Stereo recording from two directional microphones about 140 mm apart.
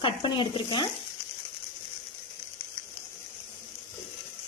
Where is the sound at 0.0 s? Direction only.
35° left (ahead or behind).